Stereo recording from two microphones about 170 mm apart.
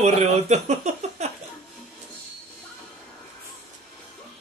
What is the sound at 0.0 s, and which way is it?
Speech, 40° right (ahead or behind).